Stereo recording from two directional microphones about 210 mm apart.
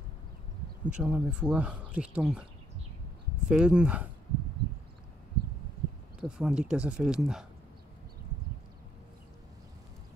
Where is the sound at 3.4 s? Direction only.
5° right (ahead or behind).